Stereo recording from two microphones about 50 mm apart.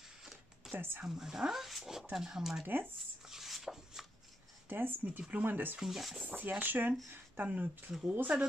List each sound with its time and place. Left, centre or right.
0.0 s a sound: centre
0.7 s speech: right
1.0 s speech: centre
2.6 s speech: right
3.3 s a sound: centre
4.6 s speech: right
5.8 s speech: centre
6.2 s speech: right